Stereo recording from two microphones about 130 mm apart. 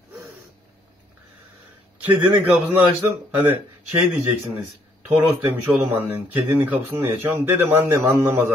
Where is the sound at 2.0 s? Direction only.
15° right (ahead or behind).